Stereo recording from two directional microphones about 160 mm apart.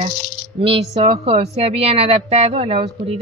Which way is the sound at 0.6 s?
35° right (ahead or behind).